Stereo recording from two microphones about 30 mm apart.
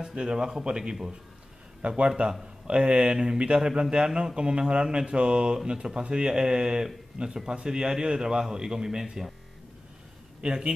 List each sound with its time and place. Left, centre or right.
0.0 s a man's voice: right
1.8 s speech: right
2.0 s a man's voice: right
10.4 s speech: right